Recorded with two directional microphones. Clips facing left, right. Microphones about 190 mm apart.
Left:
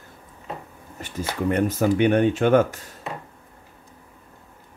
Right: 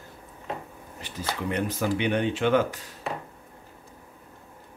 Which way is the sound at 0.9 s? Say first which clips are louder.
Left 5 dB; 50° left (ahead or behind).